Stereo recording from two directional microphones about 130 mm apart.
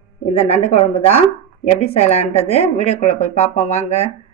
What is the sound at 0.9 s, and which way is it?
A woman's voice, 50° left (ahead or behind).